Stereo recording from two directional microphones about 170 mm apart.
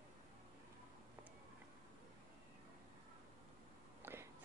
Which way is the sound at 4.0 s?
15° right (ahead or behind).